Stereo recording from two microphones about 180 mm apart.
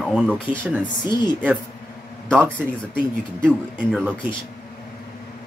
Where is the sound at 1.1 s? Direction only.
25° left (ahead or behind).